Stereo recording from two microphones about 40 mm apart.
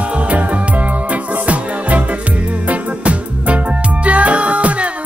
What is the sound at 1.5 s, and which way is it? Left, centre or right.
Music, right.